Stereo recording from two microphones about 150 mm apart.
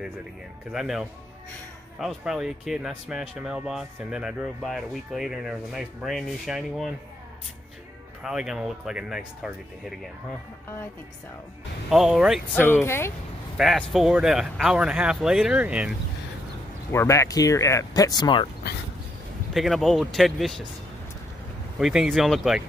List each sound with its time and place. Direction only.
0.7 s speech: 5° right (ahead or behind)
8.2 s speech: 5° right (ahead or behind)
11.9 s speech: 5° right (ahead or behind)
12.8 s speech: 15° left (ahead or behind)
13.6 s speech: centre (ahead or behind)
16.9 s speech: 20° left (ahead or behind)
19.5 s speech: centre (ahead or behind)
21.7 s speech: 5° right (ahead or behind)